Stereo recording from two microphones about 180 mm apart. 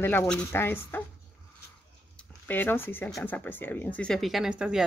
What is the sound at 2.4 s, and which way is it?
Speech, 10° left (ahead or behind).